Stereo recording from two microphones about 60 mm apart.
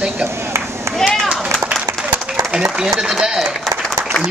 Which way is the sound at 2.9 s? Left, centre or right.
Centre.